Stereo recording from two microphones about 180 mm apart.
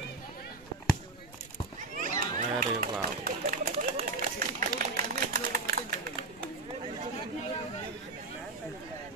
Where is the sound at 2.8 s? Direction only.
55° right (ahead or behind).